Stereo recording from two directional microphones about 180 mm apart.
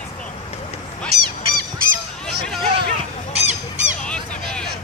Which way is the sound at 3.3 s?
35° right (ahead or behind).